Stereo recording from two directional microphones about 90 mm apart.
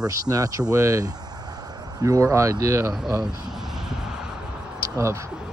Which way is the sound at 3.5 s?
5° right (ahead or behind).